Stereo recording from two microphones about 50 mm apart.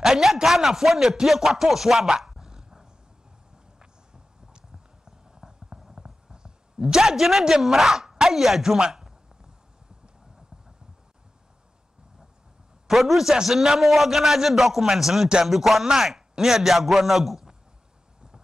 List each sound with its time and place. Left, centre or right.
0.0 s speech: centre
4.5 s a sound: centre
8.7 s speech: centre
12.8 s a man's voice: centre